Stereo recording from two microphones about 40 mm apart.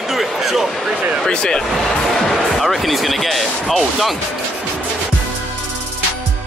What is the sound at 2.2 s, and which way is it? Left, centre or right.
Speech, centre.